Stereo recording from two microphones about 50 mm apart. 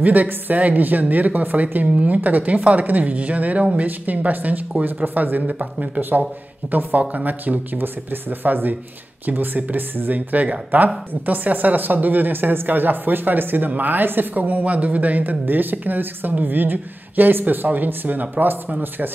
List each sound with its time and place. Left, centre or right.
0.0 s a woman's voice: right
5.9 s a woman's voice: right